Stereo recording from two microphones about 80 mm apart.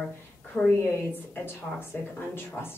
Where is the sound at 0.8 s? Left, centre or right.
Left.